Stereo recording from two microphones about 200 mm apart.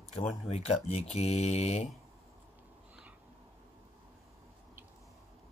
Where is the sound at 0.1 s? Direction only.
30° left (ahead or behind).